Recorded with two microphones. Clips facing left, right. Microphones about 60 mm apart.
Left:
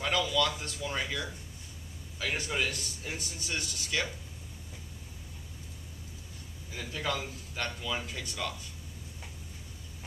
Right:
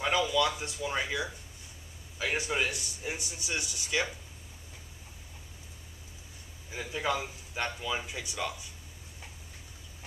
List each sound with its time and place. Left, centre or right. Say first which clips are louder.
0.0 s a man's voice: right 2 dB; centre
6.7 s a man's voice: right 3 dB; centre